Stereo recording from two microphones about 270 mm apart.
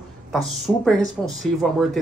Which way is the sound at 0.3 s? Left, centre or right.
Centre.